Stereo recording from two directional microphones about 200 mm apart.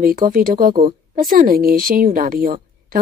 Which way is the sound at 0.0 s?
45° right (ahead or behind).